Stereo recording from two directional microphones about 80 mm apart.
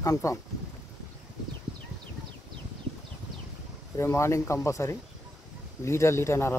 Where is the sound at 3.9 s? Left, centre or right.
Left.